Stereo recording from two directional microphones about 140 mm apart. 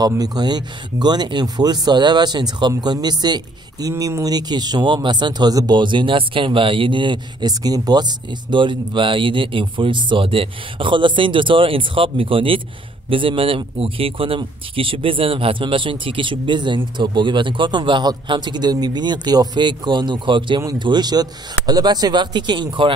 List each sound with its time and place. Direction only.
0.0 s speech: 25° right (ahead or behind)